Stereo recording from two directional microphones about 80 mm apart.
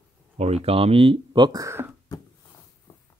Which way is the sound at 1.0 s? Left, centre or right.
Right.